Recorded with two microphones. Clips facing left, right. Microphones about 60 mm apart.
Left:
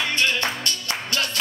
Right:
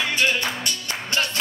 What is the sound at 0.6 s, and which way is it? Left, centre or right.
Music, right.